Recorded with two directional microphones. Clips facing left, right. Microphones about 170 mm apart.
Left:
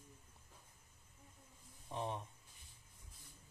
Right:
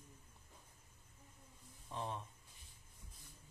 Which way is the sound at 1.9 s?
15° left (ahead or behind).